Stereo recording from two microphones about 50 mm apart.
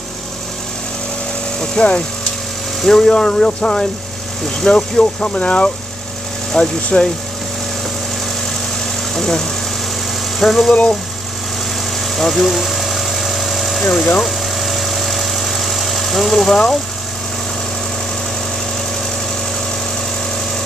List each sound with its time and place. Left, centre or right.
1.6 s speech: centre
9.1 s speech: centre
12.2 s engine: centre
14.2 s engine: centre